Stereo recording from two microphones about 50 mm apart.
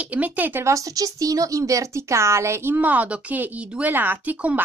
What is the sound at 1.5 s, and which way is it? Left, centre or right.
Speech, right.